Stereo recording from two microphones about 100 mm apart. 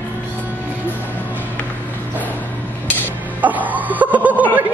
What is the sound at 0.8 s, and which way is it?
Music, 15° left (ahead or behind).